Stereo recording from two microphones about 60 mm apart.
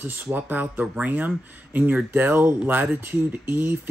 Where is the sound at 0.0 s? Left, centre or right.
Right.